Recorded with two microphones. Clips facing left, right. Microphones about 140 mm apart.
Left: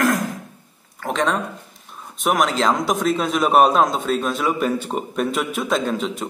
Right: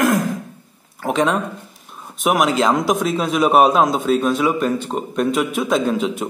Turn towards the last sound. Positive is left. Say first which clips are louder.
# right 3 dB
turn(degrees=-5)  # may be behind; listen again after turning